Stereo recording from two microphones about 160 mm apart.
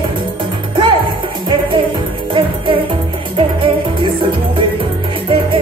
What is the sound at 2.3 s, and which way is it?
Music, 30° right (ahead or behind).